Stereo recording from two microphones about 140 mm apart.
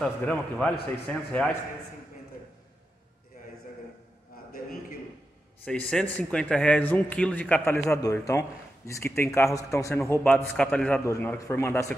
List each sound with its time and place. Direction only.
0.0 s a man's voice: 5° left (ahead or behind)
5.7 s a man's voice: 5° left (ahead or behind)
11.1 s a man's voice: 20° left (ahead or behind)